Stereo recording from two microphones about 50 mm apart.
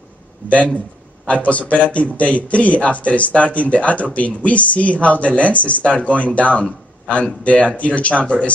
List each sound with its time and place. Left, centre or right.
1.2 s a man's voice: left